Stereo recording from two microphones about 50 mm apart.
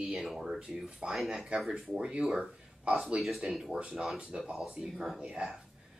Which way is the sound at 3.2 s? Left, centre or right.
Centre.